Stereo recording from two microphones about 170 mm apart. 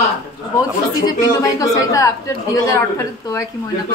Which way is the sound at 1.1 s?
20° left (ahead or behind).